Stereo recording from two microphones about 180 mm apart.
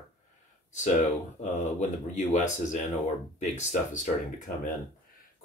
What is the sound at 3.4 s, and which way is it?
Speech, 45° left (ahead or behind).